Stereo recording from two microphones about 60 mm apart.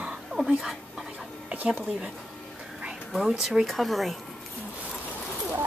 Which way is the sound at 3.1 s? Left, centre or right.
Centre.